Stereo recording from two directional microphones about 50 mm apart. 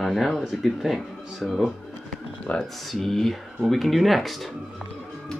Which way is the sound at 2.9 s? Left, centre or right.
Centre.